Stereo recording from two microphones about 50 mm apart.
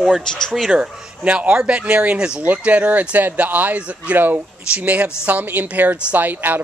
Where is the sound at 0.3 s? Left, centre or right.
Centre.